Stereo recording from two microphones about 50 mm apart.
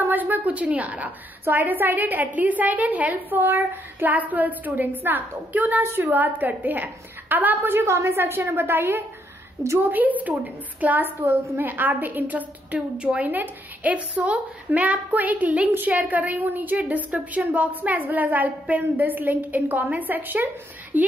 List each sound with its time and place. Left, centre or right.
0.0 s a woman's voice: right
7.8 s a woman's voice: right
9.8 s a woman's voice: right
12.9 s a woman's voice: right
13.3 s a woman's voice: right